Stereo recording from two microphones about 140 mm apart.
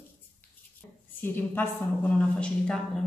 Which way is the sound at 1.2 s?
15° left (ahead or behind).